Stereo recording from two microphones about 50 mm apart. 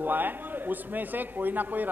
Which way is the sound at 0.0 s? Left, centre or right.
Right.